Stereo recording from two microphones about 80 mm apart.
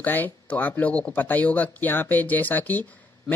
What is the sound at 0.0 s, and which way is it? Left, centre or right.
Speech, left.